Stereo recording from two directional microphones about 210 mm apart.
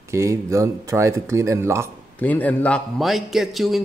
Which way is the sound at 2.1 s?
5° left (ahead or behind).